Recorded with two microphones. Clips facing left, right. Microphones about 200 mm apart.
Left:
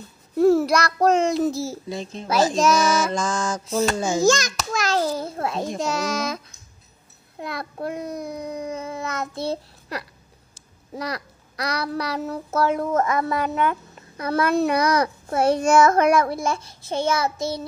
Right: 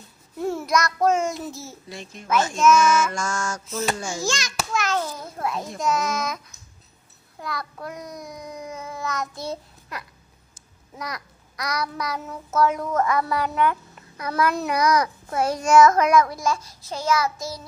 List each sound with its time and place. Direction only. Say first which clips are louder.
0.5 s a child's voice: left 5 dB; 35° left (ahead or behind)
3.1 s a child's voice: left 4 dB; 20° left (ahead or behind)
4.2 s a child's voice: left 8 dB; 45° left (ahead or behind); by 17.6 s 30° left (ahead or behind)